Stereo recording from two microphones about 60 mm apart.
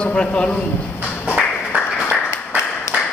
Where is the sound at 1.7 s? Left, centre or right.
Right.